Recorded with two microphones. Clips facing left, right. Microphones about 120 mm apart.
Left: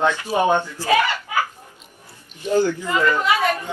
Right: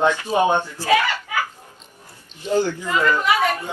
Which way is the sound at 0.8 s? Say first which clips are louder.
Even; 20° left (ahead or behind).